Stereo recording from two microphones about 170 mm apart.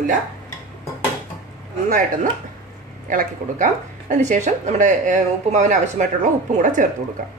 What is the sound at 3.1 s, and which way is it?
Speech, 50° right (ahead or behind).